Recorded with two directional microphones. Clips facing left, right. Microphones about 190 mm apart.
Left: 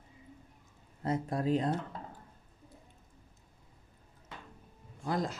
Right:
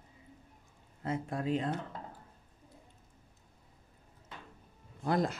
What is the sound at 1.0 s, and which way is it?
Speech, 40° left (ahead or behind).